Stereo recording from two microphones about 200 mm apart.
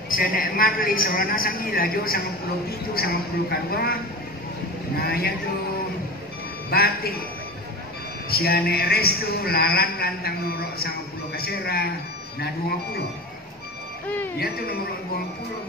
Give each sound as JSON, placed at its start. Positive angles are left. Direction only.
{"t": 0.1, "sound": "a man's voice", "side_deg": 45}
{"t": 5.0, "sound": "a man's voice", "side_deg": 50}
{"t": 6.7, "sound": "a man's voice", "side_deg": 50}
{"t": 8.3, "sound": "a man's voice", "side_deg": 50}
{"t": 14.4, "sound": "a man's voice", "side_deg": 50}